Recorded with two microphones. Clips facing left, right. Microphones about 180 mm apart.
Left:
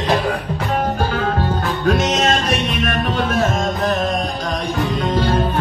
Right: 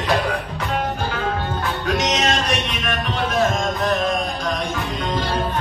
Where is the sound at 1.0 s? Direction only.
40° left (ahead or behind).